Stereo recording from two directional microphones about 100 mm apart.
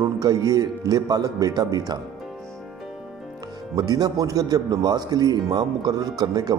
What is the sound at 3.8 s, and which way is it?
Speech, 40° right (ahead or behind).